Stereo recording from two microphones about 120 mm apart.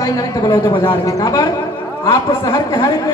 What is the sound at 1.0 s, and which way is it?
Speech, 25° left (ahead or behind).